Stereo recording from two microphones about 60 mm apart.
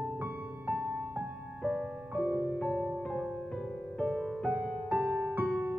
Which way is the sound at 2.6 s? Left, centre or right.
Centre.